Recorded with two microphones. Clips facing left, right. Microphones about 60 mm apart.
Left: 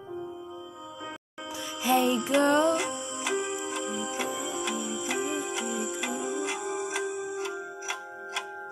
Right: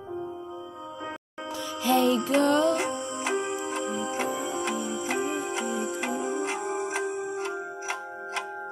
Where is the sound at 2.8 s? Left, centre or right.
Right.